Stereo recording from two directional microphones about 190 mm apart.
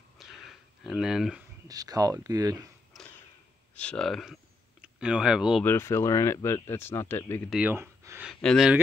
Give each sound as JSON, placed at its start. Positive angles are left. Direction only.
{"t": 0.2, "sound": "a sound", "side_deg": 0}
{"t": 1.7, "sound": "speech", "side_deg": -20}
{"t": 2.9, "sound": "a sound", "side_deg": 0}
{"t": 3.7, "sound": "speech", "side_deg": 5}
{"t": 5.6, "sound": "speech", "side_deg": 10}
{"t": 7.4, "sound": "speech", "side_deg": -5}
{"t": 8.3, "sound": "speech", "side_deg": 0}